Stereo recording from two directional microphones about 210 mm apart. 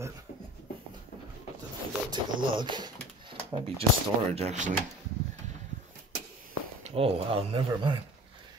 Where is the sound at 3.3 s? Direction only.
25° right (ahead or behind).